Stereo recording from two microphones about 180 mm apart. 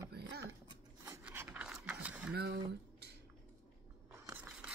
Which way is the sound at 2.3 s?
60° right (ahead or behind).